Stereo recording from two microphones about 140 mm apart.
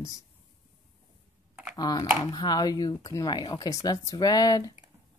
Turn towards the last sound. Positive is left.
turn(degrees=25)  # may be behind; listen again after turning